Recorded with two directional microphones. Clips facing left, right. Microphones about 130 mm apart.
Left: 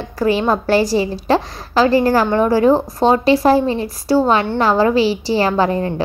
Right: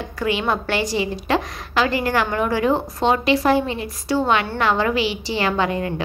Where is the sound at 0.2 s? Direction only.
35° left (ahead or behind).